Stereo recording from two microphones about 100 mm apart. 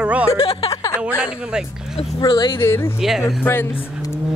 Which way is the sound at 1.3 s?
5° right (ahead or behind).